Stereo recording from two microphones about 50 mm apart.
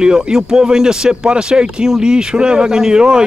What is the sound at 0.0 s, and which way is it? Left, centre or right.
Speech, centre.